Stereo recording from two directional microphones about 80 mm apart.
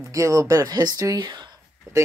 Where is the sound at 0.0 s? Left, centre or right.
Right.